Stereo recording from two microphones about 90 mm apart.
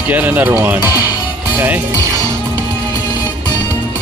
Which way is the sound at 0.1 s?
20° right (ahead or behind).